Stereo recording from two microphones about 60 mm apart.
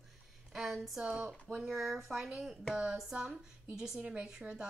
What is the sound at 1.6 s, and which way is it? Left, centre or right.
A woman's voice, centre.